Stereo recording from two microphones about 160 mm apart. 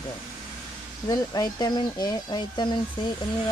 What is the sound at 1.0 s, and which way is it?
Speech, 25° left (ahead or behind).